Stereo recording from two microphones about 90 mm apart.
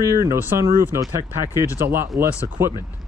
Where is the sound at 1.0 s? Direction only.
40° right (ahead or behind).